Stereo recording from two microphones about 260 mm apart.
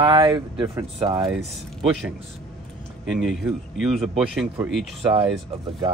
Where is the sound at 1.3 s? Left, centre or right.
Centre.